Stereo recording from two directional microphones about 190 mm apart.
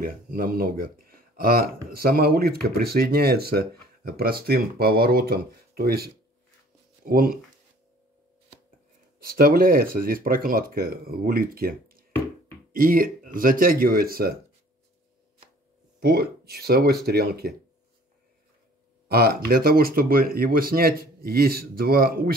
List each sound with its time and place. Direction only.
0.0 s speech: 50° right (ahead or behind)
9.2 s speech: 50° right (ahead or behind)
16.0 s speech: 55° right (ahead or behind)
19.0 s speech: 55° right (ahead or behind)